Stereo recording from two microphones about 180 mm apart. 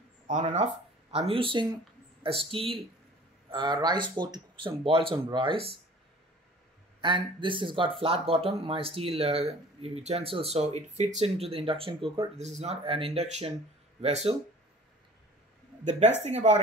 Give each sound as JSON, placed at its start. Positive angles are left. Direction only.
{"t": 1.1, "sound": "speech", "side_deg": -30}
{"t": 7.0, "sound": "speech", "side_deg": -25}
{"t": 15.8, "sound": "speech", "side_deg": -40}